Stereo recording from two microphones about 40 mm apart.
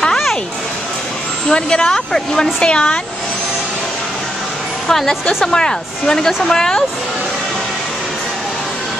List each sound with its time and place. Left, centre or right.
1.5 s speech: centre
4.8 s a woman's voice: centre